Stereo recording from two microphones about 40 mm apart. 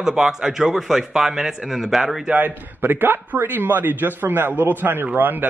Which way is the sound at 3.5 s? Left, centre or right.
Right.